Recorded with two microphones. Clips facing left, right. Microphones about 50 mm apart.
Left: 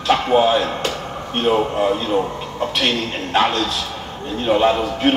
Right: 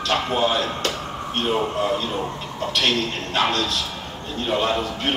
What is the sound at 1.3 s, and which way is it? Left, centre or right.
Speech, centre.